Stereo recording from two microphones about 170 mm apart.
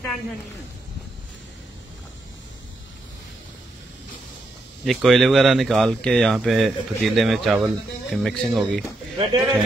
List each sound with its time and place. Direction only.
4.8 s speech: centre (ahead or behind)
9.2 s a man's voice: 20° right (ahead or behind)